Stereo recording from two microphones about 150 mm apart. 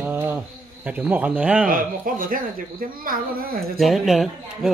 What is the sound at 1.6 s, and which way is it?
Speech, 65° right (ahead or behind).